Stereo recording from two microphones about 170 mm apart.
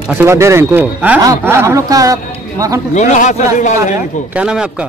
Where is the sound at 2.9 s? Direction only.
45° left (ahead or behind).